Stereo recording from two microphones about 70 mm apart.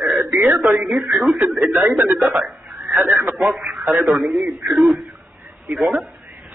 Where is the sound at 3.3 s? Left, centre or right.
Centre.